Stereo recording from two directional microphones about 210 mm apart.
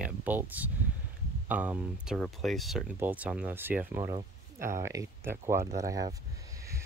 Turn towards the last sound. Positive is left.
turn(degrees=-15)  # may be behind; listen again after turning